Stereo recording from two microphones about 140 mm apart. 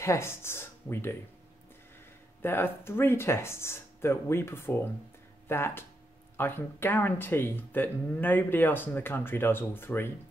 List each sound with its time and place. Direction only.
0.0 s speech: 20° left (ahead or behind)
2.4 s speech: 15° left (ahead or behind)